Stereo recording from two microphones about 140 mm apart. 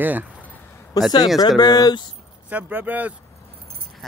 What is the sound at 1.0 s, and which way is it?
Speech, 25° left (ahead or behind).